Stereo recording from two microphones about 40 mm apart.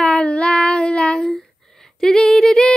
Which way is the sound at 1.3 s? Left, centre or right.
Centre.